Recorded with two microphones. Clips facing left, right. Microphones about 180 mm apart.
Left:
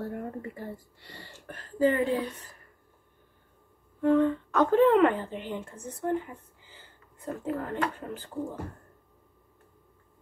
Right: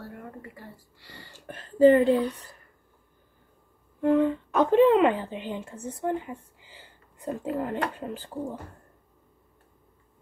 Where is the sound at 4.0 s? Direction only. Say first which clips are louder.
Right 1 dB; 15° right (ahead or behind).